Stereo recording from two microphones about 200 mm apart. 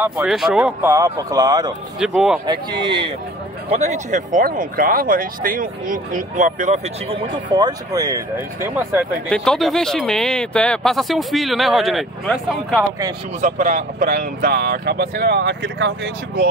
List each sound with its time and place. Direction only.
0.0 s speech: 5° right (ahead or behind)
2.0 s speech: 5° right (ahead or behind)
3.6 s speech: 30° right (ahead or behind)
7.4 s speech: 20° right (ahead or behind)
9.3 s speech: 5° left (ahead or behind)
13.4 s speech: 40° right (ahead or behind); by 16.4 s 60° right (ahead or behind)